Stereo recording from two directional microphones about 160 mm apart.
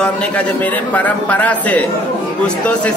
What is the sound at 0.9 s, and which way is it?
Speech, 10° left (ahead or behind).